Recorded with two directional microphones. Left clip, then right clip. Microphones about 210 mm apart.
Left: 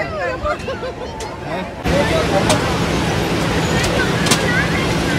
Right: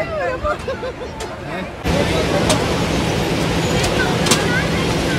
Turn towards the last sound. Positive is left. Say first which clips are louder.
# left 1 dB
turn(degrees=0)  # may be behind; listen again after turning